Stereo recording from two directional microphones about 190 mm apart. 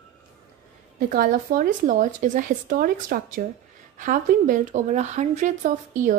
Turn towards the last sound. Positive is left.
turn(degrees=-40)  # may be behind; listen again after turning